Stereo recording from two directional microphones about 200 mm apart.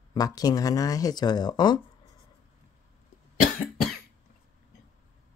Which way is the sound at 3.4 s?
45° left (ahead or behind).